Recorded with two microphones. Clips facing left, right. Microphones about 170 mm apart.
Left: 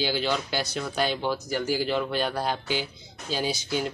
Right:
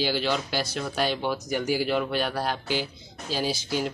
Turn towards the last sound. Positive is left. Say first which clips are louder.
# even
turn(degrees=-5)  # may be behind; listen again after turning